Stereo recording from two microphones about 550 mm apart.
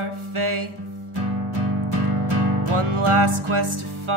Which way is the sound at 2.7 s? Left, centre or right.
Right.